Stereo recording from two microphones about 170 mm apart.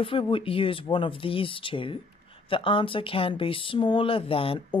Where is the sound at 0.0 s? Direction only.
30° left (ahead or behind).